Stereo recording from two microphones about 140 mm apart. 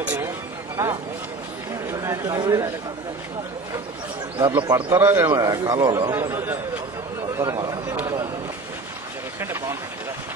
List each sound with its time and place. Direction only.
0.0 s speech: 10° right (ahead or behind)
2.0 s speech: 25° right (ahead or behind)
4.4 s a man's voice: 25° right (ahead or behind)
6.1 s a man's voice: 15° right (ahead or behind)
9.4 s a man's voice: 20° right (ahead or behind)